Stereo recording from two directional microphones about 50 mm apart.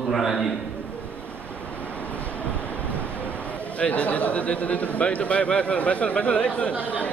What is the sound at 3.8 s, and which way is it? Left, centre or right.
A man's voice, left.